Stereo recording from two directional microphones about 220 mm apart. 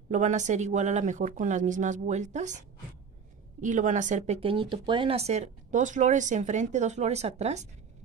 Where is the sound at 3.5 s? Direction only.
35° right (ahead or behind).